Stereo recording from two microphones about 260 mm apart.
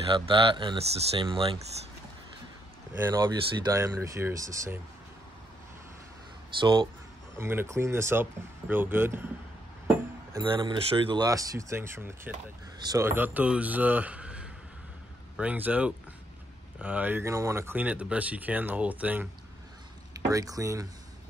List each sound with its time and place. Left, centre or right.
0.1 s speech: centre
2.9 s speech: centre
6.6 s speech: centre
10.3 s speech: centre